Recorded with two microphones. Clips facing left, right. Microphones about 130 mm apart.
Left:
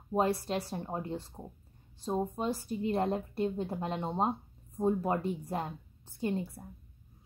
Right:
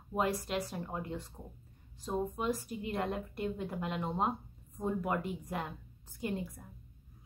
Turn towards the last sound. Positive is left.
turn(degrees=30)  # may be behind; listen again after turning